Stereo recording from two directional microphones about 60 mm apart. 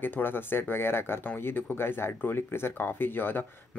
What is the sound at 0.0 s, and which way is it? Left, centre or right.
Speech, left.